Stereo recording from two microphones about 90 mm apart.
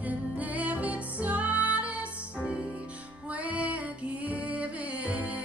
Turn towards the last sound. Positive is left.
turn(degrees=-15)  # may be behind; listen again after turning